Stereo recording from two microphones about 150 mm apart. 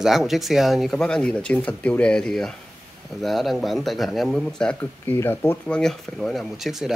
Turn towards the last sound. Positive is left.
turn(degrees=0)  # may be behind; listen again after turning